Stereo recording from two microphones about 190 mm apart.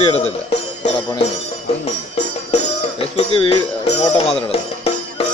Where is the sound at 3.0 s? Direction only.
30° left (ahead or behind).